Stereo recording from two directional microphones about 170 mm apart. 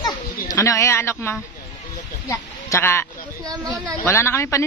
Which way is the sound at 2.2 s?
20° left (ahead or behind).